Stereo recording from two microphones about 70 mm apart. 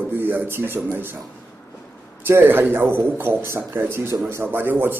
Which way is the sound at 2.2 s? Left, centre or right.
Right.